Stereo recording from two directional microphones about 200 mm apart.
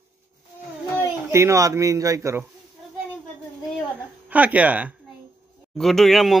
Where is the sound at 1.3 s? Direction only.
15° right (ahead or behind).